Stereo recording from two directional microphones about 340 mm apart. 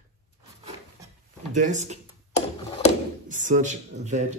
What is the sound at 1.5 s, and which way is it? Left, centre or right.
Speech, right.